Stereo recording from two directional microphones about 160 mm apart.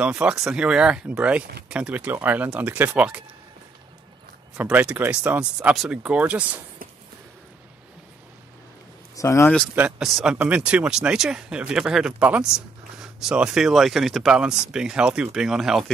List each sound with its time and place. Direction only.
0.0 s speech: 5° right (ahead or behind)
4.6 s speech: 10° right (ahead or behind)
9.1 s speech: 20° left (ahead or behind)
9.8 s speech: 5° right (ahead or behind)